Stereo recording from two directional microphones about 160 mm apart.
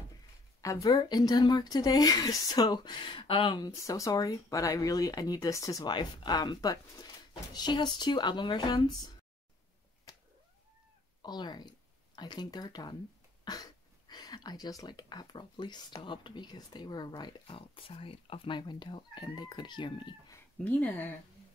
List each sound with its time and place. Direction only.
0.6 s speech: 20° left (ahead or behind)
10.1 s cat: 20° left (ahead or behind)
11.2 s speech: 25° left (ahead or behind)
20.5 s speech: 10° left (ahead or behind)